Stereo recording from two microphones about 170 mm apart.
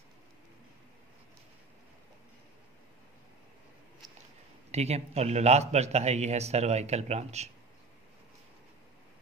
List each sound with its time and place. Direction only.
4.6 s a man's voice: 40° right (ahead or behind)